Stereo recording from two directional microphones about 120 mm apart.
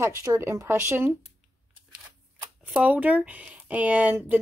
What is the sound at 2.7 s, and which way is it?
Speech, 10° right (ahead or behind).